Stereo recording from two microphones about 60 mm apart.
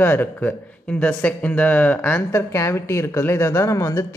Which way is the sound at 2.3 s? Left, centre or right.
Left.